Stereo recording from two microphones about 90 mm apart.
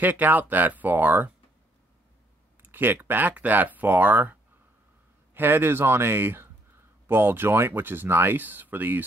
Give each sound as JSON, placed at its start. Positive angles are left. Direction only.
{"t": 0.0, "sound": "speech", "side_deg": -20}
{"t": 2.6, "sound": "speech", "side_deg": -20}